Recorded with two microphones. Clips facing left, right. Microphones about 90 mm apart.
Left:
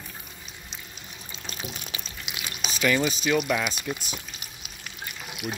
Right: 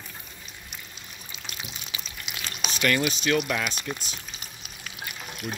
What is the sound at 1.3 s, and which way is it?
Pour, 35° left (ahead or behind).